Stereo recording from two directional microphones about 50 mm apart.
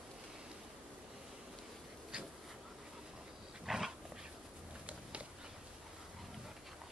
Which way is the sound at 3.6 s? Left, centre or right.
Centre.